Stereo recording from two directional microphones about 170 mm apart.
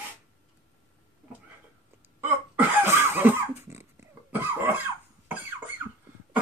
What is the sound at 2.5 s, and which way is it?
Cough, 15° right (ahead or behind).